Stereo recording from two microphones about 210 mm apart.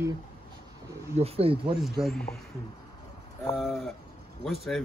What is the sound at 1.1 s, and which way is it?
Speech, 30° right (ahead or behind).